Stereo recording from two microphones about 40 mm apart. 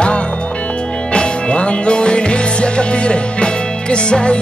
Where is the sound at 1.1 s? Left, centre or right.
Left.